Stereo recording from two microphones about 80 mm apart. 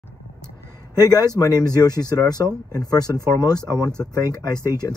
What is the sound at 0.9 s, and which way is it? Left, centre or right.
Speech, left.